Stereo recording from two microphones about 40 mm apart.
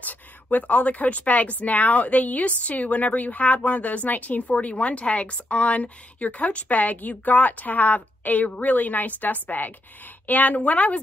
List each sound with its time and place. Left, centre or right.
0.0 s speech: left